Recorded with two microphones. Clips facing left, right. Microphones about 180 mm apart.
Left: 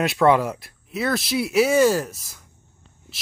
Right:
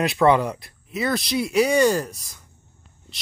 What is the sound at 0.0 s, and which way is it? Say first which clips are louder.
Speech: even; centre (ahead or behind).